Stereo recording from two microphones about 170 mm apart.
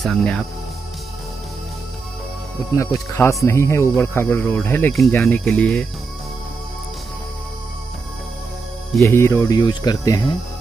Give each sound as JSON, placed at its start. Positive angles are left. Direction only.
{"t": 0.0, "sound": "speech", "side_deg": 5}
{"t": 2.8, "sound": "speech", "side_deg": 15}
{"t": 9.0, "sound": "speech", "side_deg": 15}